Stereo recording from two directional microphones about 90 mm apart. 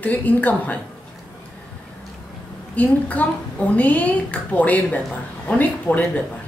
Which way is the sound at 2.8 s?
15° left (ahead or behind).